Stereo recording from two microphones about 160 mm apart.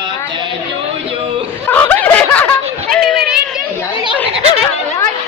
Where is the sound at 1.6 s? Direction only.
10° left (ahead or behind).